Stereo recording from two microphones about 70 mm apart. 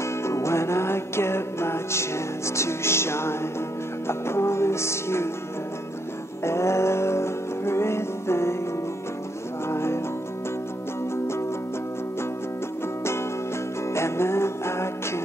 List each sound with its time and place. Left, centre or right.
0.0 s music: left
6.4 s music: left
9.7 s music: left
13.9 s music: left